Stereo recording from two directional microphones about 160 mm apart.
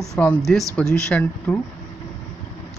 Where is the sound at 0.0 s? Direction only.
5° left (ahead or behind).